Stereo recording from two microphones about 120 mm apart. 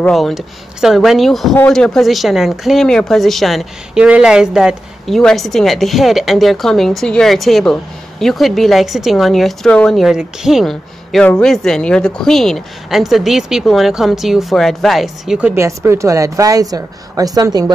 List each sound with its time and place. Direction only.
0.1 s speech: centre (ahead or behind)
15.5 s a woman's voice: 20° right (ahead or behind)